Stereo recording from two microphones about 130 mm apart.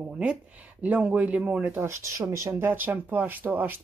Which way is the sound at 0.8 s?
10° right (ahead or behind).